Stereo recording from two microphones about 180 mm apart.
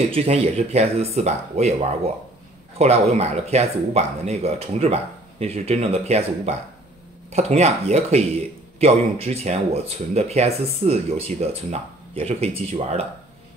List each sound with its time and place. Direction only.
0.1 s speech: 35° right (ahead or behind)